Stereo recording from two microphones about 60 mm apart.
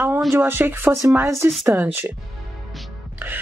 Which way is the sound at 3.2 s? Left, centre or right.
Right.